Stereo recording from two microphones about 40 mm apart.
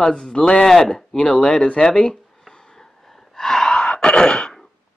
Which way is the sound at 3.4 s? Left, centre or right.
Centre.